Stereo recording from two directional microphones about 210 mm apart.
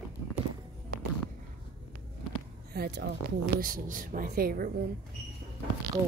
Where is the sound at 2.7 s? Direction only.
50° right (ahead or behind).